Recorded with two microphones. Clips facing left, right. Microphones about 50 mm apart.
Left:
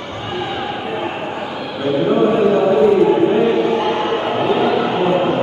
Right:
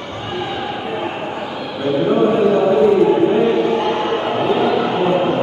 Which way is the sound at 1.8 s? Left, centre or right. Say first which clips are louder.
Even; centre.